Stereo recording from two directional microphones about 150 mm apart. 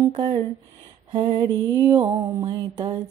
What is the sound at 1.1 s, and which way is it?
Mantra, 35° right (ahead or behind).